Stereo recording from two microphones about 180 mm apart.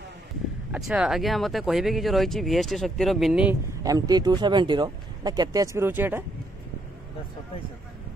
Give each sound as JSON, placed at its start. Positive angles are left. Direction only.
{"t": 0.7, "sound": "speech", "side_deg": -5}
{"t": 3.8, "sound": "speech", "side_deg": -20}